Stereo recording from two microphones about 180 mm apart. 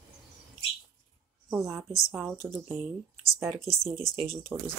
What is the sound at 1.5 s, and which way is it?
Speech, 15° right (ahead or behind).